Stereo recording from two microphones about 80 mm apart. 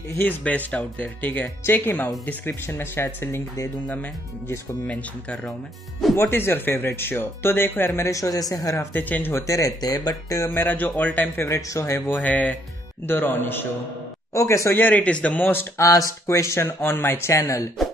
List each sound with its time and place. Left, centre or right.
0.2 s speech: centre
4.8 s speech: centre
6.1 s speech: left
8.9 s speech: left
9.3 s speech: left
10.4 s speech: left
11.3 s speech: left
12.2 s speech: centre
14.3 s speech: left
14.8 s speech: centre
15.8 s speech: left